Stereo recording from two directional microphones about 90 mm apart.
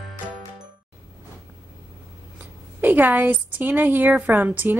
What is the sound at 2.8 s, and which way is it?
A woman's voice, 20° right (ahead or behind).